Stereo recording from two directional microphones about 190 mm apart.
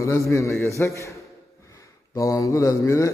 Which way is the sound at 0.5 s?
15° left (ahead or behind).